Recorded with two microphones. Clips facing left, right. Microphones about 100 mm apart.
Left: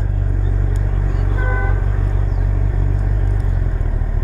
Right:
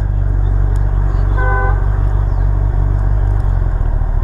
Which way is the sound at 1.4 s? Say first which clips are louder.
Right 7 dB; 35° right (ahead or behind).